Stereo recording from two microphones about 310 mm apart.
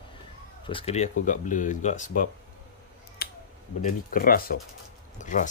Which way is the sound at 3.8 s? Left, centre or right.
Left.